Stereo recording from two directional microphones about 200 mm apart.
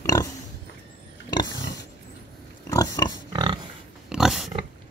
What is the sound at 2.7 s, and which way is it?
Pig, 20° left (ahead or behind).